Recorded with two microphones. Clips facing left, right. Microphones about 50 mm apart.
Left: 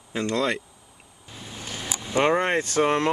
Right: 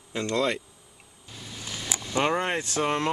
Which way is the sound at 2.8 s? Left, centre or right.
Left.